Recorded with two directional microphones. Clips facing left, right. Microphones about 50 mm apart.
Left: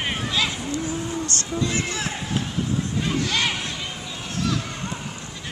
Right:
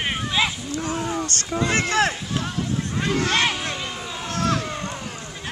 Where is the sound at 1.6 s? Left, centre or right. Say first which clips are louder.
Right 10 dB; right.